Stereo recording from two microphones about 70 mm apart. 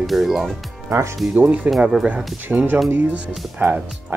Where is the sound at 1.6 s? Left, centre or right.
Right.